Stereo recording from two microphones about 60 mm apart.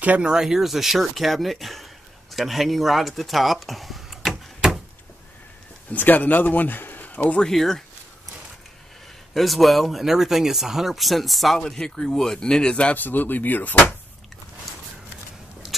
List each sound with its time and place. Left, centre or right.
0.0 s speech: right
0.3 s speech: centre
4.6 s door: centre
5.9 s speech: left
7.4 s speech: centre
9.3 s speech: centre
12.9 s speech: left